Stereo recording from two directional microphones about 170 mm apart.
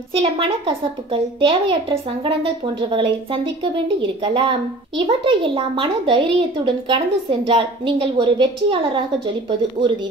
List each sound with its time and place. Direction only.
0.1 s speech: 35° right (ahead or behind)